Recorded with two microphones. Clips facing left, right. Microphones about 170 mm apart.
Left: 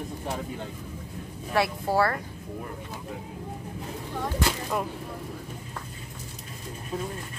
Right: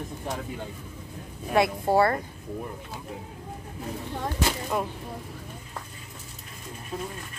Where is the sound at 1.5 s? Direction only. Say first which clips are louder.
Right 3 dB; 20° right (ahead or behind).